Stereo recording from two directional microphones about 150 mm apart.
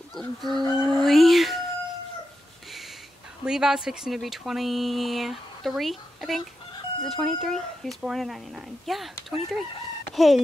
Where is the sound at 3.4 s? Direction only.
5° right (ahead or behind).